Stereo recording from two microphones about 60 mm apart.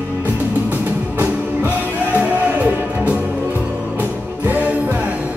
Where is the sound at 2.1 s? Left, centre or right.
Right.